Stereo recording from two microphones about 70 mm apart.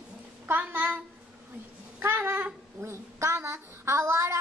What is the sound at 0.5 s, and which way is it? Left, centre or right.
A child's voice, right.